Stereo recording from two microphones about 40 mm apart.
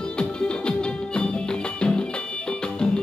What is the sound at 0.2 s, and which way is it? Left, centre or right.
Music, left.